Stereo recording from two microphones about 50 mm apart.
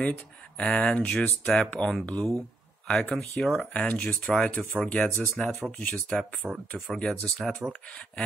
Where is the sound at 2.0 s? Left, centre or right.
Left.